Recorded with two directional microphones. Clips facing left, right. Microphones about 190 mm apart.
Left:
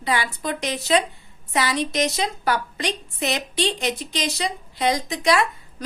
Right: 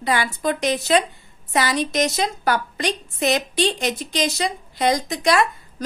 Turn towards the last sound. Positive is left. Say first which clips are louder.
# right 1 dB
turn(degrees=-45)  # may be behind; listen again after turning